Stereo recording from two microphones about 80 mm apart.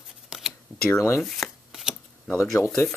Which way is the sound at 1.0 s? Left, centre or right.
Left.